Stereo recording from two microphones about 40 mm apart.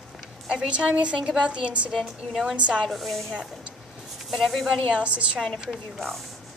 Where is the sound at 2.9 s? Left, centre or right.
Centre.